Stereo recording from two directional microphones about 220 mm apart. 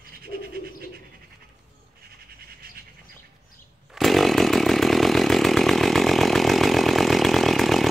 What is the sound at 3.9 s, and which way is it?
Chainsaw, centre (ahead or behind).